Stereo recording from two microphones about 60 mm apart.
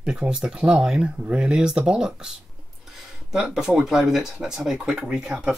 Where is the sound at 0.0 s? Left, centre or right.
Centre.